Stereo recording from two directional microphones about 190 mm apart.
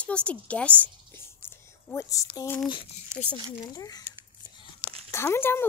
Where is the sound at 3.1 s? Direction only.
15° right (ahead or behind).